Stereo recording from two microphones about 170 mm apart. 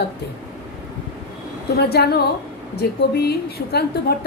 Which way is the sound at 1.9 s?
70° left (ahead or behind).